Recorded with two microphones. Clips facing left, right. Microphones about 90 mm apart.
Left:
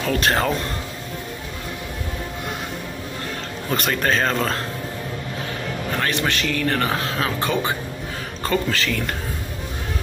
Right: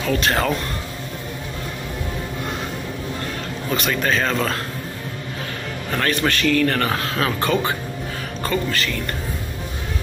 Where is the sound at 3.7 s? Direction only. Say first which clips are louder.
Even; 40° left (ahead or behind).